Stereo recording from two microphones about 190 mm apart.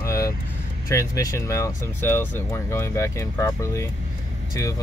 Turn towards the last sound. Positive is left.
turn(degrees=15)  # may be behind; listen again after turning